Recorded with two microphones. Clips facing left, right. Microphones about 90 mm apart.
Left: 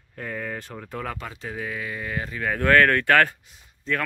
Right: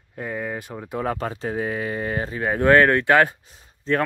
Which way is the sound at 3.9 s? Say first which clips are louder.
Right 5 dB; 35° right (ahead or behind).